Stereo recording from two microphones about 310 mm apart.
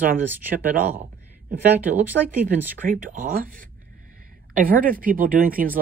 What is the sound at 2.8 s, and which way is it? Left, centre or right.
Speech, right.